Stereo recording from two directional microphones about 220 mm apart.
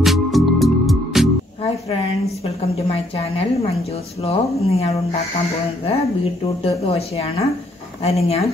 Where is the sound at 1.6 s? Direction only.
30° left (ahead or behind).